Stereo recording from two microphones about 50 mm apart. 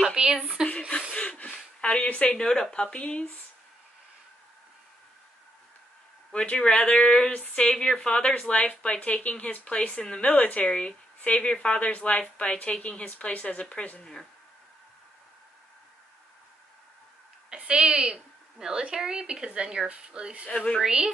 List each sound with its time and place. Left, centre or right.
0.1 s a sound: centre
0.7 s chuckle: centre
1.1 s a sound: centre
1.8 s speech: left
2.3 s a woman's voice: centre
6.3 s a woman's voice: left
7.7 s a woman's voice: centre; by 9.8 s left
9.8 s speech: centre
10.2 s a woman's voice: left
17.5 s a woman's voice: right
20.4 s a woman's voice: centre
20.8 s a woman's voice: centre